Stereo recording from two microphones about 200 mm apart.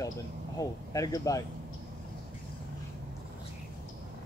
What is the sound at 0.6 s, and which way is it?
Speech, 20° left (ahead or behind).